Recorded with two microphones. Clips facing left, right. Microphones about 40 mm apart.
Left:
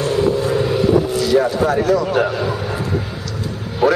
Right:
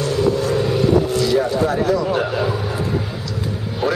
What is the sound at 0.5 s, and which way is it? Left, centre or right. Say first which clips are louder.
Vehicle: left 1 dB; centre.